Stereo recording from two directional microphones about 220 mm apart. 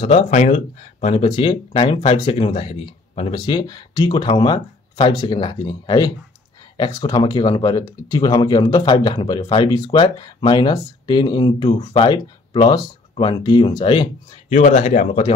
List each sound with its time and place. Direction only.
0.0 s speech: 30° left (ahead or behind)